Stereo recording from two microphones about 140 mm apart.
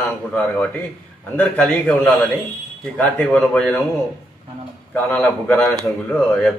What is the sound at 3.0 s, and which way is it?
Speech, 10° left (ahead or behind).